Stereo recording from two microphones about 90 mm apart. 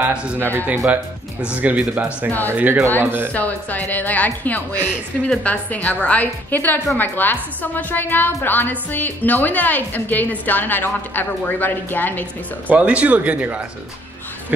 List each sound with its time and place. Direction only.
0.0 s speech: 10° right (ahead or behind)
1.5 s speech: 15° right (ahead or behind)
3.3 s a woman's voice: 20° left (ahead or behind)
12.6 s speech: 15° right (ahead or behind)